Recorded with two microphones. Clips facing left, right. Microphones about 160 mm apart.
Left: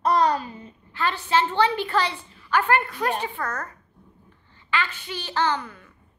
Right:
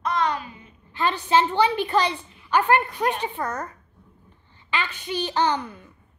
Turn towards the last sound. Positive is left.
turn(degrees=-20)  # may be behind; listen again after turning